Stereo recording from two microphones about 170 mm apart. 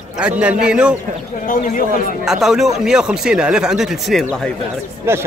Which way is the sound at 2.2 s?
5° right (ahead or behind).